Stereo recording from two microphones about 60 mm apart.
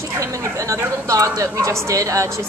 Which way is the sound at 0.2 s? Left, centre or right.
Right.